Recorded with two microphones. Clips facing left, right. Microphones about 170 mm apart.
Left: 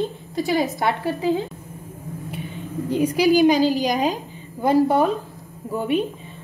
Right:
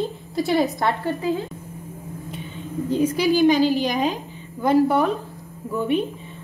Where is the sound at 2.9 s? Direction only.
15° left (ahead or behind).